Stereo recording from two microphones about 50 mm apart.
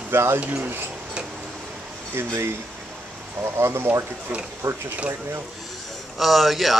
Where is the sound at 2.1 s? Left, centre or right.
Right.